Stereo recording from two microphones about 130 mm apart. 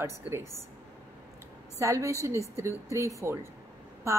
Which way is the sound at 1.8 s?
25° right (ahead or behind).